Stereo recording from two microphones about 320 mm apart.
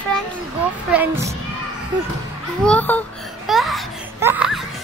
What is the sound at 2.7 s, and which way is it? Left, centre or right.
Speech, centre.